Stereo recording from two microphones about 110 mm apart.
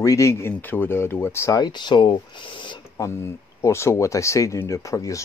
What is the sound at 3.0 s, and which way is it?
Speech, 25° left (ahead or behind).